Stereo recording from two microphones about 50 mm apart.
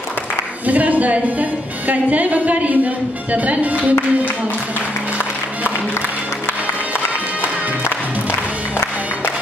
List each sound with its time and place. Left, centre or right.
0.7 s a woman's voice: right